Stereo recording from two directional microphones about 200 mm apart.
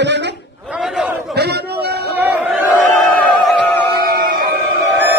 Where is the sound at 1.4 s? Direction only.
55° right (ahead or behind).